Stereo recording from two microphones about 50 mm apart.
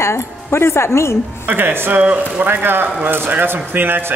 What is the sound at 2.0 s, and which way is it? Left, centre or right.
Speech, right.